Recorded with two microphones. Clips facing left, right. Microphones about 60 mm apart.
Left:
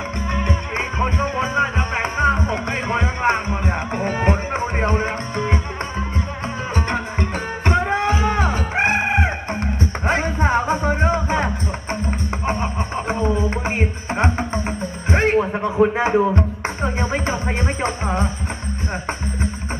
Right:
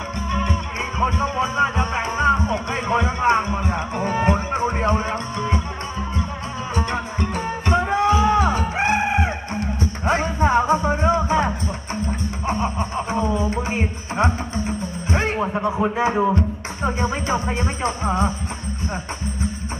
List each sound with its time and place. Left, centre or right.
0.3 s music: left
6.7 s music: left